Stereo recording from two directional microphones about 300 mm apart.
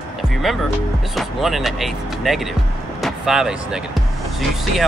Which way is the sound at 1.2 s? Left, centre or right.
Centre.